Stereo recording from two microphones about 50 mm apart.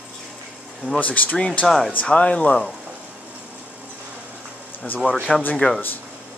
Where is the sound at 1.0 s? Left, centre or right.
Left.